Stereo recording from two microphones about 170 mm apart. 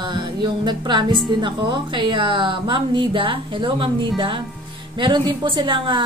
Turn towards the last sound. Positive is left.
turn(degrees=-30)  # may be behind; listen again after turning